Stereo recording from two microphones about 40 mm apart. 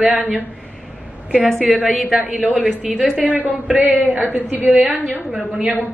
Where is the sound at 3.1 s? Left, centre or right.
Right.